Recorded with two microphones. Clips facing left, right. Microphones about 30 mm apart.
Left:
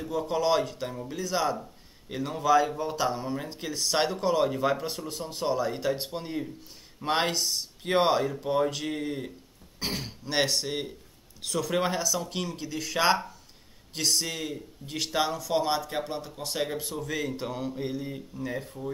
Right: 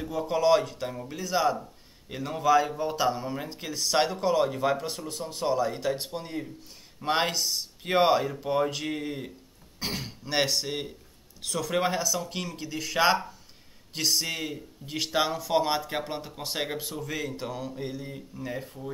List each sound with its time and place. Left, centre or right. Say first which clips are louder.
0.0 s a man's voice: right 2 dB; centre
16.8 s a man's voice: left 1 dB; centre